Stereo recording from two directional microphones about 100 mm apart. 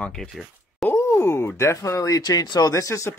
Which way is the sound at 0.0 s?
5° left (ahead or behind).